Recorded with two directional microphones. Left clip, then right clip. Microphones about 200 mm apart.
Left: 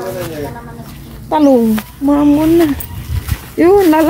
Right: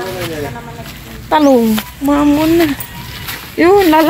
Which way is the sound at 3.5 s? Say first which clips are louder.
Even; 10° left (ahead or behind).